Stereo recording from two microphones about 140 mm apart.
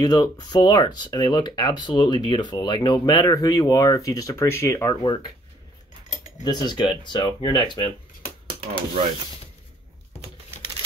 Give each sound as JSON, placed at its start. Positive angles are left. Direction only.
{"t": 0.0, "sound": "speech", "side_deg": 30}
{"t": 6.4, "sound": "speech", "side_deg": 30}